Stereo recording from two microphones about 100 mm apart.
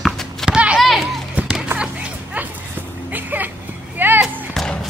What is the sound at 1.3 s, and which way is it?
Music, 10° right (ahead or behind).